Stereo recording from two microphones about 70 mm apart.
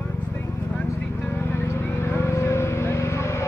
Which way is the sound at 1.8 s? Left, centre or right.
Left.